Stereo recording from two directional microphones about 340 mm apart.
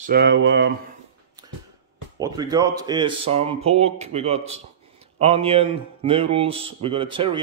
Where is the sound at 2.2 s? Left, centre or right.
Centre.